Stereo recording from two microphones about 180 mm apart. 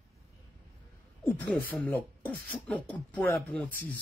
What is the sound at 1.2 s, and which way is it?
Speech, 10° left (ahead or behind).